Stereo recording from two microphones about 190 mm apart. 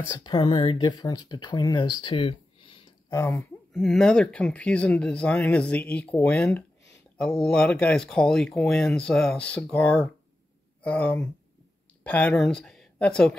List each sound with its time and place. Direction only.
0.1 s speech: 25° left (ahead or behind)
3.2 s speech: 15° left (ahead or behind)
3.7 s speech: centre (ahead or behind)